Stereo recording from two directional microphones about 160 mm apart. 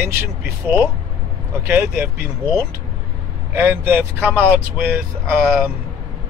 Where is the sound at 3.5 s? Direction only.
15° right (ahead or behind).